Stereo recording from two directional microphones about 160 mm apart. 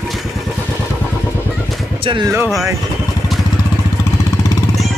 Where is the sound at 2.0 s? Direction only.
30° right (ahead or behind).